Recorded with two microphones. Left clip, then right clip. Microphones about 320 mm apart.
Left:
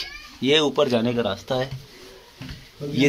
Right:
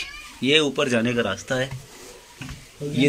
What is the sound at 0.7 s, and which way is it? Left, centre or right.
Speech, centre.